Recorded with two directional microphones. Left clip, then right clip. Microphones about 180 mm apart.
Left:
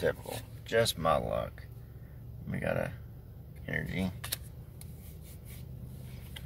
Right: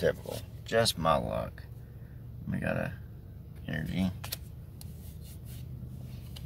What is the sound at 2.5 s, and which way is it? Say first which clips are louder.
Speech: left 1 dB; centre (ahead or behind).